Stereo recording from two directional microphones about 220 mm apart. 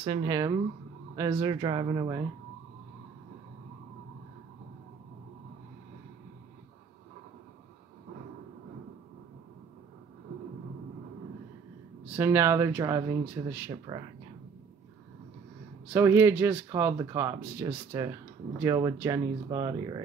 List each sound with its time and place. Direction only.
0.0 s speech: 20° right (ahead or behind)
12.2 s speech: 10° right (ahead or behind)
13.7 s speech: 20° right (ahead or behind)
15.9 s speech: 10° right (ahead or behind)